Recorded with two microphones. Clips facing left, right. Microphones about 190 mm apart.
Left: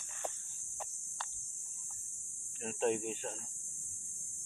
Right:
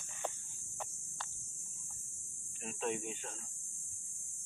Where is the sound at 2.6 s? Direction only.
35° left (ahead or behind).